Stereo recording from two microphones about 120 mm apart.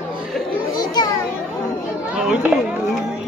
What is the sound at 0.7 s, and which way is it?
Children playing, 35° left (ahead or behind).